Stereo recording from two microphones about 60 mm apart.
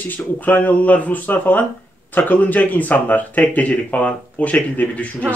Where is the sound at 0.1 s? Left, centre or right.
Left.